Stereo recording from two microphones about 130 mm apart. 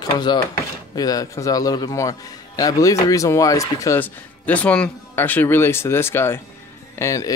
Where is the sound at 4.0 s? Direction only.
10° left (ahead or behind).